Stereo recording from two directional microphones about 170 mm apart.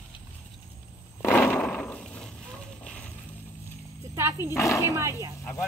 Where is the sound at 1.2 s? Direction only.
10° left (ahead or behind).